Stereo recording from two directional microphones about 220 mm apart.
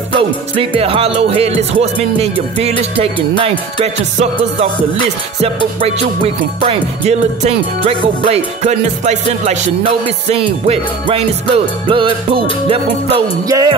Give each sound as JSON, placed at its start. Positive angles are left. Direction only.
{"t": 0.1, "sound": "music", "side_deg": -25}
{"t": 3.8, "sound": "music", "side_deg": -30}
{"t": 5.8, "sound": "music", "side_deg": -25}